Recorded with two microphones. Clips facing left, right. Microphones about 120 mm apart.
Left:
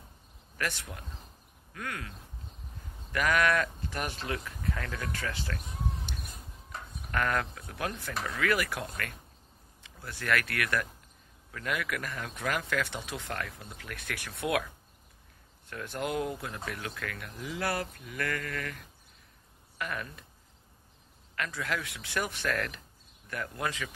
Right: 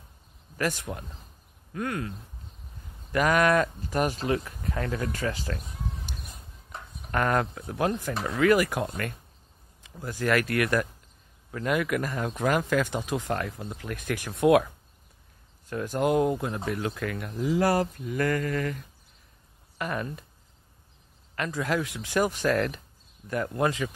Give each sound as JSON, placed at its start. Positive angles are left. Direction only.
{"t": 0.6, "sound": "speech", "side_deg": -40}
{"t": 5.2, "sound": "speech", "side_deg": -40}
{"t": 6.7, "sound": "speech", "side_deg": -30}
{"t": 15.7, "sound": "speech", "side_deg": -35}
{"t": 19.8, "sound": "speech", "side_deg": -30}
{"t": 21.4, "sound": "speech", "side_deg": -35}